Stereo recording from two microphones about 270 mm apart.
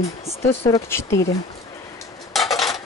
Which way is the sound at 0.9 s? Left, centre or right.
Centre.